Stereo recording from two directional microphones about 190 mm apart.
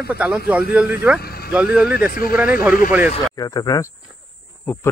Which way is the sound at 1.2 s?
55° left (ahead or behind).